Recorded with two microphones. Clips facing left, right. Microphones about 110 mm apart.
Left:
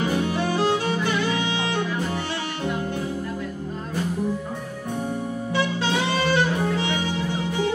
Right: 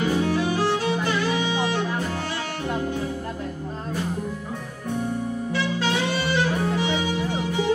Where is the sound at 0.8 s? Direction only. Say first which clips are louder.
Even; 15° right (ahead or behind).